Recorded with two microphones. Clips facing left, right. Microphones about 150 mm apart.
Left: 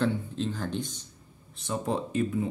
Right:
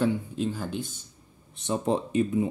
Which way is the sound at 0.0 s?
10° right (ahead or behind).